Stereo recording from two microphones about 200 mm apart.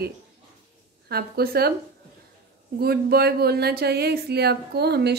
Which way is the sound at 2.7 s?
50° right (ahead or behind).